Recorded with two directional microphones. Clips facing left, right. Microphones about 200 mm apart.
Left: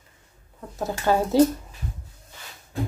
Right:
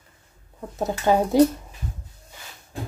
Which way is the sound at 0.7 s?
20° right (ahead or behind).